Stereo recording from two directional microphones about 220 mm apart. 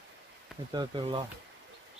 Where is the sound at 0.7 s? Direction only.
20° right (ahead or behind).